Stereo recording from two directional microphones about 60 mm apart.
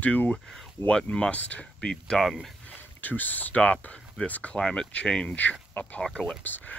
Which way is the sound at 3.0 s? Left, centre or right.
Left.